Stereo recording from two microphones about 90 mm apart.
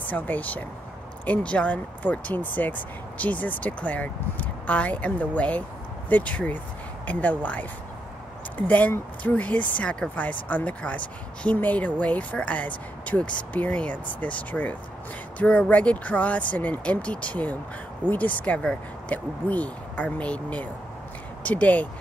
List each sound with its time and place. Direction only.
0.1 s speech: 20° left (ahead or behind)